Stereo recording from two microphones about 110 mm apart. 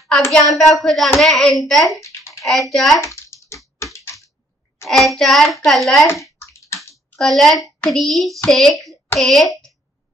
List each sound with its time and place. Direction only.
0.3 s a woman's voice: 5° left (ahead or behind)
2.0 s bathtub: 30° left (ahead or behind)
2.4 s a woman's voice: centre (ahead or behind)
3.3 s typing: 30° left (ahead or behind)
4.8 s a woman's voice: centre (ahead or behind)
6.4 s a sound: 25° left (ahead or behind)
7.2 s a woman's voice: centre (ahead or behind)